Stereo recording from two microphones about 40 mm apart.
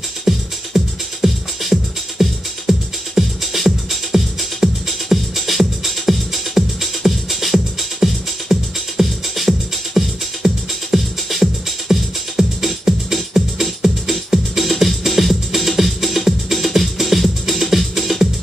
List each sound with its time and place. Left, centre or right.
0.3 s music: centre